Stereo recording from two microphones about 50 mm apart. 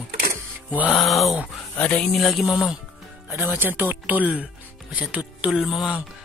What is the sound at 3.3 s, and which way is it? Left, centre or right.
Speech, right.